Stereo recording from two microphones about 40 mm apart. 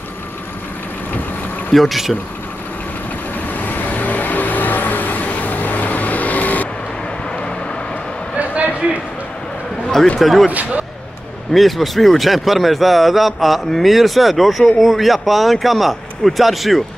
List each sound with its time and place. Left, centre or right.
1.7 s a man's voice: centre
3.5 s vehicle: left
8.4 s a sound: right
10.1 s a man's voice: centre
10.5 s speech: right
11.5 s a man's voice: centre